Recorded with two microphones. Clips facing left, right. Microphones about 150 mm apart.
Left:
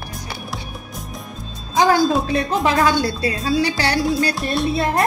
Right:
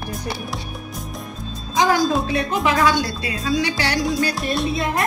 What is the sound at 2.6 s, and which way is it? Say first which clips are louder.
Speech: left 1 dB; 35° left (ahead or behind).